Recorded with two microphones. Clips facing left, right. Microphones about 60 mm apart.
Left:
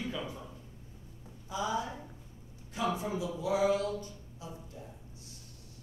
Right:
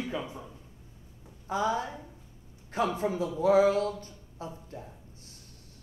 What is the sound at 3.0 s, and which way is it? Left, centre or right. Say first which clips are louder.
Speech: right 6 dB; right.